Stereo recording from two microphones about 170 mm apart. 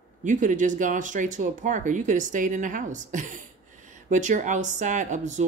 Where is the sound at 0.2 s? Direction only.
50° right (ahead or behind).